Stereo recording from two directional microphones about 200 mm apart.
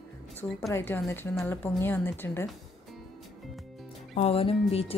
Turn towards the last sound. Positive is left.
turn(degrees=30)  # may be behind; listen again after turning